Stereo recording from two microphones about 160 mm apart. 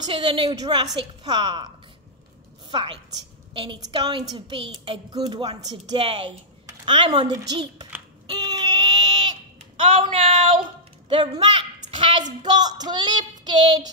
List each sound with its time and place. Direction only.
0.0 s a woman's voice: 30° right (ahead or behind)
2.7 s a woman's voice: 30° right (ahead or behind)
8.4 s a sound: 25° right (ahead or behind)
10.1 s a woman's voice: 35° right (ahead or behind)
13.4 s child singing: 25° right (ahead or behind)